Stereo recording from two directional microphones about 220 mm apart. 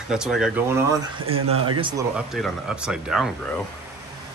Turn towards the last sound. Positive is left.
turn(degrees=0)  # may be behind; listen again after turning